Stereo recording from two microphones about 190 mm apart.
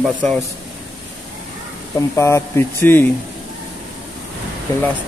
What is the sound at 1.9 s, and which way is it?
Speech, 15° left (ahead or behind).